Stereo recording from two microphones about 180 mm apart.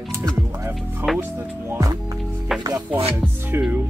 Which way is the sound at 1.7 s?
20° right (ahead or behind).